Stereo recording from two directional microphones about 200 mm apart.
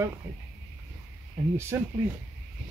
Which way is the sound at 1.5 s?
10° right (ahead or behind).